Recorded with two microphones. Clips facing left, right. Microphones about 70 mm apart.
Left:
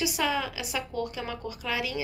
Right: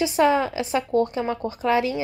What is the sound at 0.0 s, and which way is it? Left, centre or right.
Speech, right.